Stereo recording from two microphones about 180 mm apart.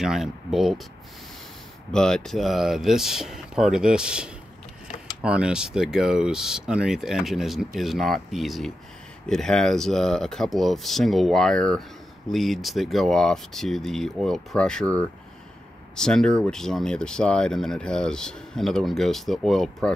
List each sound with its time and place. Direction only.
0.0 s speech: centre (ahead or behind)
1.9 s speech: 5° left (ahead or behind)